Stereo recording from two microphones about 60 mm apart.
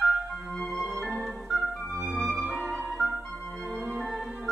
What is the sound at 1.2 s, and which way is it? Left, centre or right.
Organ, centre.